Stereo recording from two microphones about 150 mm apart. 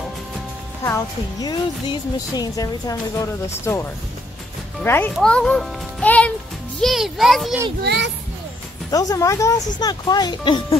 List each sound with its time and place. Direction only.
0.8 s speech: 20° left (ahead or behind)
4.8 s a child's voice: 15° left (ahead or behind)
8.9 s speech: 25° left (ahead or behind)